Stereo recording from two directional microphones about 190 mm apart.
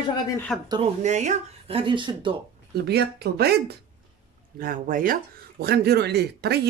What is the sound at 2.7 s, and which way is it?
Speech, 60° right (ahead or behind).